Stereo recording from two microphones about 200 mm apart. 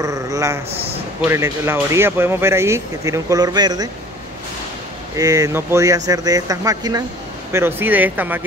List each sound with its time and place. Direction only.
0.0 s speech: 15° right (ahead or behind)
5.1 s speech: 15° right (ahead or behind)